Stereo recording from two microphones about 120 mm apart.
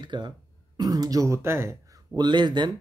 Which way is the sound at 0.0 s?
40° right (ahead or behind).